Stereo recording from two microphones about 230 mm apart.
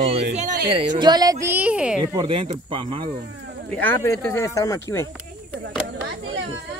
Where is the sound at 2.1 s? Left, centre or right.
Right.